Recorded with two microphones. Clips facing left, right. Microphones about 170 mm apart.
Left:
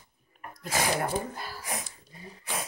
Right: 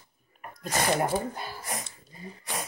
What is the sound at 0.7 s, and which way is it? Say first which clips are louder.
Speech: right 2 dB; centre (ahead or behind).